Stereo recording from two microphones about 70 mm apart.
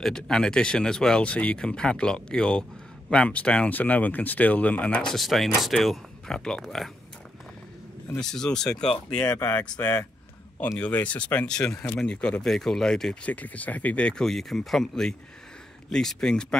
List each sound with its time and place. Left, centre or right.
0.0 s speech: centre
5.0 s speech: centre
8.2 s speech: centre
10.8 s speech: left
13.2 s speech: left